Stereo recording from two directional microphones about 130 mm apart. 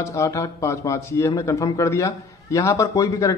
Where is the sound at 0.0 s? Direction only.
25° left (ahead or behind).